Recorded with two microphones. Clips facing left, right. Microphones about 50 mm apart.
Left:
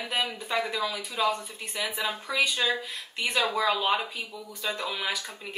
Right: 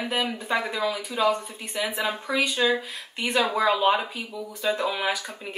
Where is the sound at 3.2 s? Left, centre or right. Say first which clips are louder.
Right 3 dB; right.